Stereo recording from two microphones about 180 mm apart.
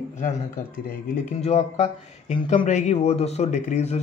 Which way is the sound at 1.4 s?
35° left (ahead or behind).